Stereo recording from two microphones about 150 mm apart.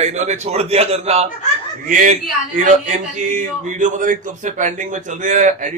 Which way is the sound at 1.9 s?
65° right (ahead or behind).